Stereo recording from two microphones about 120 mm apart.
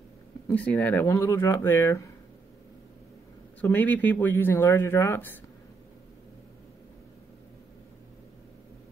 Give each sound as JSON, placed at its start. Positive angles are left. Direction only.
{"t": 0.5, "sound": "speech", "side_deg": 15}
{"t": 1.1, "sound": "speech", "side_deg": 25}
{"t": 3.6, "sound": "speech", "side_deg": 15}